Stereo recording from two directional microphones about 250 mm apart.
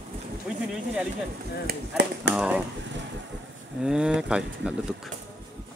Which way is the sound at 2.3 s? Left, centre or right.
Centre.